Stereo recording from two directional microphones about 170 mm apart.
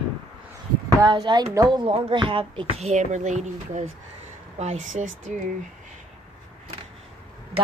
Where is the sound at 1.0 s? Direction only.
25° right (ahead or behind).